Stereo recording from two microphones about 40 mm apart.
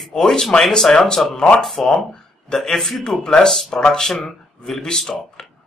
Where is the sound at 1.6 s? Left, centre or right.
Centre.